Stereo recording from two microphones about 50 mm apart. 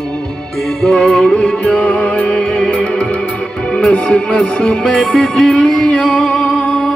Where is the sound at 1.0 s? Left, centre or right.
Centre.